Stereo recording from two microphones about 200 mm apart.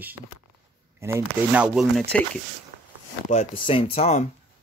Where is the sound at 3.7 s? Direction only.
30° left (ahead or behind).